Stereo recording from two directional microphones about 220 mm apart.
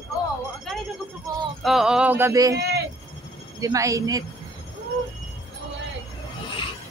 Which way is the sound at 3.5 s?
15° right (ahead or behind).